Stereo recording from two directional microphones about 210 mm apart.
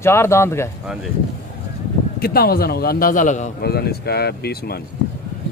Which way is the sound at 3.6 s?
50° left (ahead or behind).